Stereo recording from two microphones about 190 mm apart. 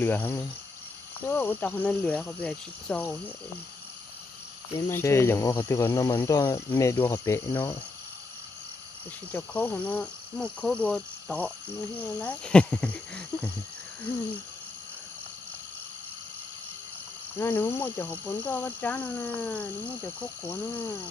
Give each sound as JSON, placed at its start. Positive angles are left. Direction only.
{"t": 0.0, "sound": "speech", "side_deg": 10}
{"t": 4.7, "sound": "speech", "side_deg": 15}
{"t": 9.3, "sound": "speech", "side_deg": 10}
{"t": 17.4, "sound": "speech", "side_deg": 10}